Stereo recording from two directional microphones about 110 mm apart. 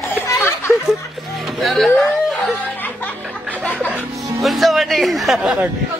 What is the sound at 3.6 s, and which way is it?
Music, 15° left (ahead or behind).